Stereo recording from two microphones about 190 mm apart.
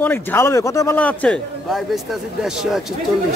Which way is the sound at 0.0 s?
10° left (ahead or behind).